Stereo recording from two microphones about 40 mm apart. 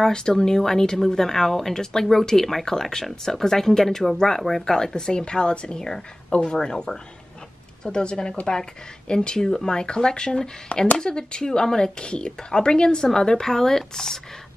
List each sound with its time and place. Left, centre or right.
0.0 s speech: centre